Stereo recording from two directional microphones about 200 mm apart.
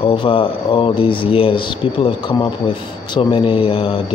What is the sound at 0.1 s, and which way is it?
Speech, 25° left (ahead or behind).